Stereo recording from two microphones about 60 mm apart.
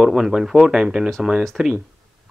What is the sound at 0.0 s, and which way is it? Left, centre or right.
Speech, centre.